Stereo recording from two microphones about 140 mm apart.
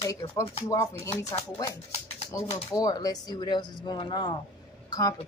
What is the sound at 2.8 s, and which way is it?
A woman's voice, 25° left (ahead or behind).